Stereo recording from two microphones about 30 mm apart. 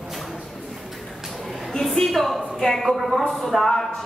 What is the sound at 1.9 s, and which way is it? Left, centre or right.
A man's voice, centre.